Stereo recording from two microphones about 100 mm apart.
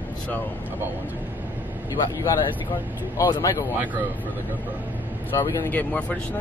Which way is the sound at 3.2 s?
30° left (ahead or behind).